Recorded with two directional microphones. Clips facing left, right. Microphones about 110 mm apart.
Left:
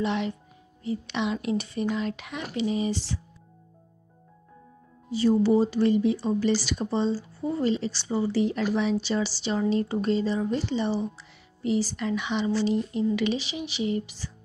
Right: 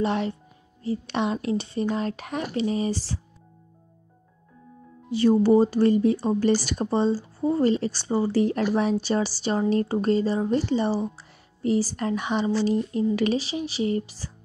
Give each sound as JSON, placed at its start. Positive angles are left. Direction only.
{"t": 0.0, "sound": "speech", "side_deg": -40}
{"t": 5.1, "sound": "speech", "side_deg": -55}